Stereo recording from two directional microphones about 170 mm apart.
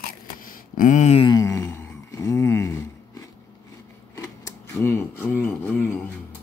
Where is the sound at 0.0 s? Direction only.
55° left (ahead or behind); by 1.3 s 40° left (ahead or behind).